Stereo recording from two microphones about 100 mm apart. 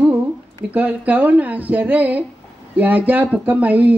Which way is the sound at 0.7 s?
15° right (ahead or behind).